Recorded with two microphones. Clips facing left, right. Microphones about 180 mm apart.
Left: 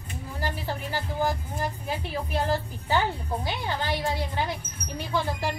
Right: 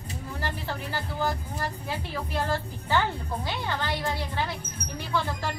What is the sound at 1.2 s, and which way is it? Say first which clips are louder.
Speech: left 1 dB; 15° left (ahead or behind).